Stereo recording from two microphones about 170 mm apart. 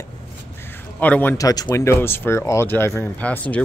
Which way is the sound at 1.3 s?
20° left (ahead or behind).